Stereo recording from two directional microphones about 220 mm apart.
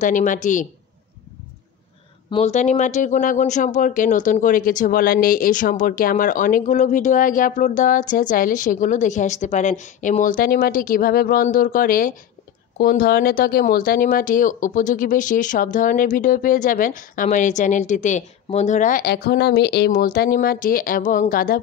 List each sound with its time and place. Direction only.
0.0 s speech: 35° left (ahead or behind)
2.3 s speech: 30° left (ahead or behind)